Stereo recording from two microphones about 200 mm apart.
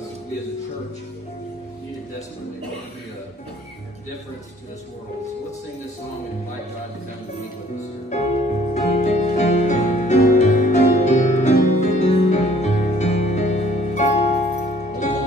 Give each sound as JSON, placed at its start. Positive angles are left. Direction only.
{"t": 8.1, "sound": "music", "side_deg": 35}